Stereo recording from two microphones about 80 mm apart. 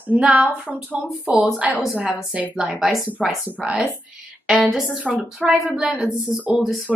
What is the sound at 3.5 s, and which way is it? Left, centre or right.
Speech, centre.